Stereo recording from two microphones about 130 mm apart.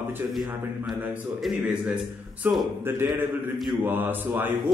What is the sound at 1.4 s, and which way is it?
Speech, centre (ahead or behind).